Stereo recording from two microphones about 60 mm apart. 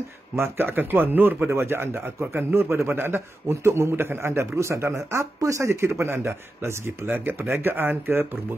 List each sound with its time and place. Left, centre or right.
0.4 s a man's voice: right
4.6 s speech: right
5.8 s speech: right
7.1 s a man's voice: right